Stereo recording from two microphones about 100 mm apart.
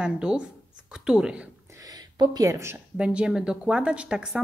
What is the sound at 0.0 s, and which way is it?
Speech, 10° right (ahead or behind).